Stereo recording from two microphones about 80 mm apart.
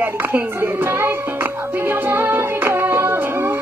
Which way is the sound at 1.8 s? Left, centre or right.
Right.